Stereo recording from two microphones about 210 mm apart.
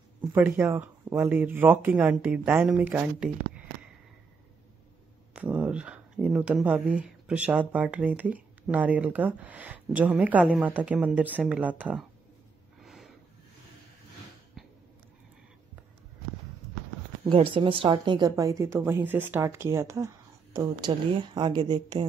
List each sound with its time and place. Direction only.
0.3 s speech: 10° right (ahead or behind)
5.3 s speech: 5° right (ahead or behind)
12.8 s snort: centre (ahead or behind)
17.3 s a woman's voice: 25° right (ahead or behind)